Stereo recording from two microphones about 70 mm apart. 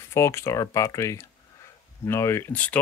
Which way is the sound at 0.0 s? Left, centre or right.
Left.